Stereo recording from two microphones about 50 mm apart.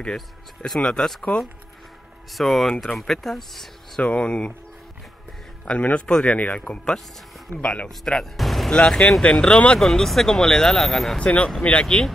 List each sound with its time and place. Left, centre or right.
0.0 s speech: centre
2.3 s speech: centre
4.0 s speech: left
5.7 s speech: left
6.3 s speech: left
6.6 s speech: centre
8.0 s speech: centre
8.6 s speech: centre
9.8 s speech: centre
11.1 s speech: left